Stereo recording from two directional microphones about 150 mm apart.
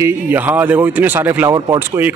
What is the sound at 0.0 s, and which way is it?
A man's voice, 15° right (ahead or behind).